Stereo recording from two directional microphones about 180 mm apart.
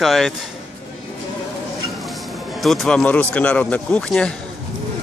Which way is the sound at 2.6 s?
Centre (ahead or behind).